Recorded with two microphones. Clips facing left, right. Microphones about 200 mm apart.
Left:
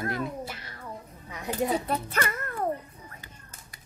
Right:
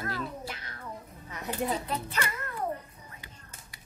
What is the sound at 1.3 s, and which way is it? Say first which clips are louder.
Speech: left 3 dB; 10° left (ahead or behind).